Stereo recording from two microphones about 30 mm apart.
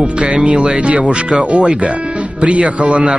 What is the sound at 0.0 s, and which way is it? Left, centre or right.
Music, right.